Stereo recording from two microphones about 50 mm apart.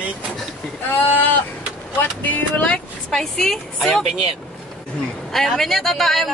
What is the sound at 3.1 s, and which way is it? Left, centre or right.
Speech, centre.